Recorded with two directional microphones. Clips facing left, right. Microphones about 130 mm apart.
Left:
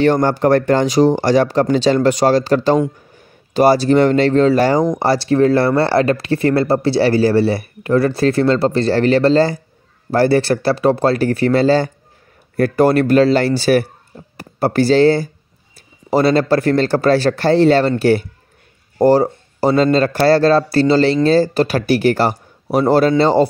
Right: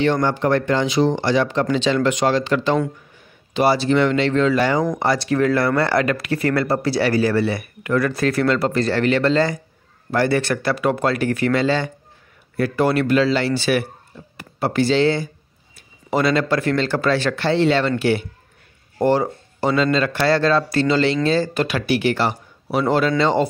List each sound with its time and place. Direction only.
0.0 s speech: 45° left (ahead or behind)